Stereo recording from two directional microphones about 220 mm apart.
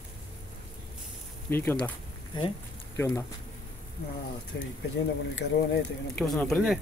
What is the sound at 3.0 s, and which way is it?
Speech, 15° left (ahead or behind).